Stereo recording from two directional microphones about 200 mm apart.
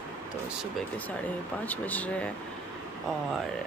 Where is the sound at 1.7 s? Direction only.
10° left (ahead or behind).